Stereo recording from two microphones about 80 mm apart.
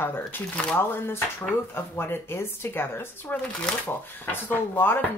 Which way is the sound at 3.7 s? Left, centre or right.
Centre.